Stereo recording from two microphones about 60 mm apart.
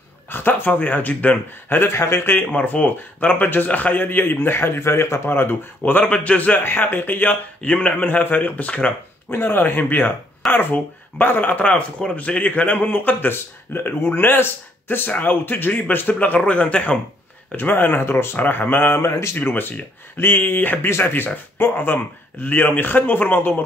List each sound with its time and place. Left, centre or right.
0.3 s a man's voice: left
1.8 s speech: left
2.4 s speech: left
5.9 s a man's voice: left
6.6 s a man's voice: left
9.3 s a man's voice: left; by 17.0 s centre
17.5 s speech: left
19.3 s speech: left